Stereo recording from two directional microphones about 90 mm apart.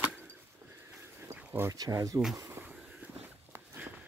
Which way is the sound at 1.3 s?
30° right (ahead or behind).